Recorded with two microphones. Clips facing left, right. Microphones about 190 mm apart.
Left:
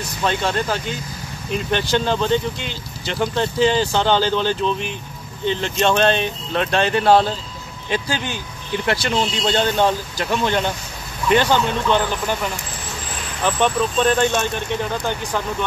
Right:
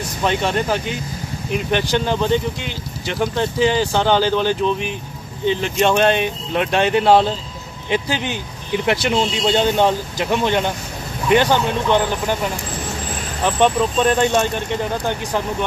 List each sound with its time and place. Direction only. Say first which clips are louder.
0.2 s speech: right 2 dB; 15° right (ahead or behind)
13.6 s speech: right 3 dB; 15° right (ahead or behind)